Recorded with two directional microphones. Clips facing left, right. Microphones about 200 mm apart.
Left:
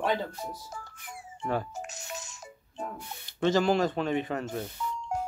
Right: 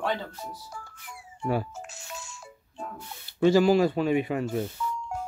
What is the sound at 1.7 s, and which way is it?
Music, 20° left (ahead or behind).